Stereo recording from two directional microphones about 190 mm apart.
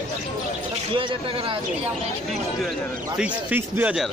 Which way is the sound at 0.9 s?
30° right (ahead or behind).